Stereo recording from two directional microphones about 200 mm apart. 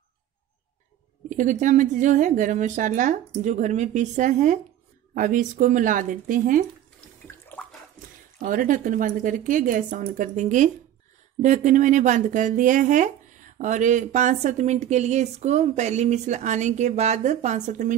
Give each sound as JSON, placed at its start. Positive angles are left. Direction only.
{"t": 1.3, "sound": "speech", "side_deg": -40}
{"t": 7.2, "sound": "bathtub", "side_deg": 10}
{"t": 8.4, "sound": "speech", "side_deg": -40}